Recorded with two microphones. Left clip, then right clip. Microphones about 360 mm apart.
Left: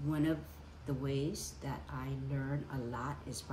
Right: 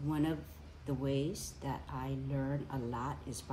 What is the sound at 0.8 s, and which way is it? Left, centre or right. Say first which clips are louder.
Speech: right 2 dB; centre.